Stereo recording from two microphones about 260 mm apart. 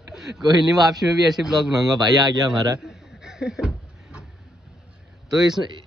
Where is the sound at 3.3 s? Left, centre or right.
Centre.